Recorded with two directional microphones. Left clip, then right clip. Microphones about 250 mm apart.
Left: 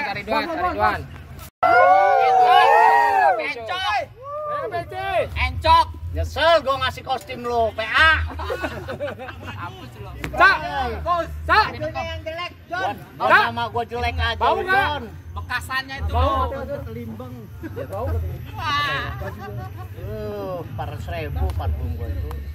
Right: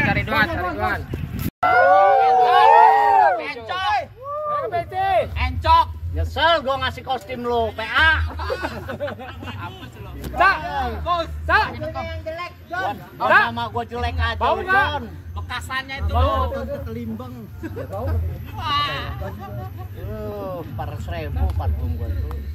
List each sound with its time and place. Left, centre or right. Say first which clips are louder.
0.6 s speech: left 3 dB; left
1.6 s a sound: even; left
8.4 s speech: right 1 dB; left
16.5 s speech: right 1 dB; right
18.6 s speech: even; left